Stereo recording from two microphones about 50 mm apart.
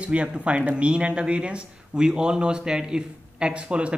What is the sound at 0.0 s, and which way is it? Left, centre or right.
Speech, right.